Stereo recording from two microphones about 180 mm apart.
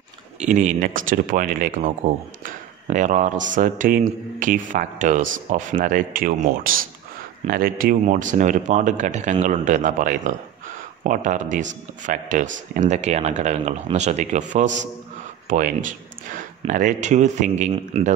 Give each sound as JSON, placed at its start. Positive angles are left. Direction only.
{"t": 0.4, "sound": "speech", "side_deg": -40}